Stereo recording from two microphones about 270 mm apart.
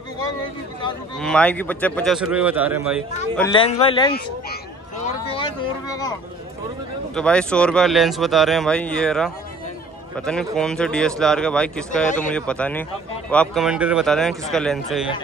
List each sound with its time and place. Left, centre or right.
1.1 s speech: centre
3.5 s speech: left
5.0 s vehicle: centre
7.2 s speech: centre